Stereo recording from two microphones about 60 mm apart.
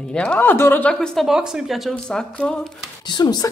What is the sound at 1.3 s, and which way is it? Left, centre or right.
Speech, centre.